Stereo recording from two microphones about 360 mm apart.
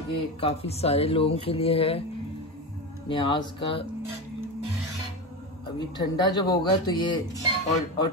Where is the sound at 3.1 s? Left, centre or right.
Centre.